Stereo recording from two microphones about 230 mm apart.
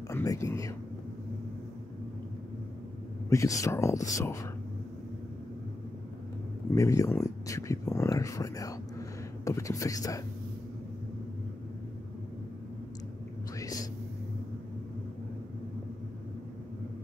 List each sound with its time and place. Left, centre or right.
0.1 s speech: centre
3.3 s speech: centre
6.7 s speech: centre
13.6 s a sound: centre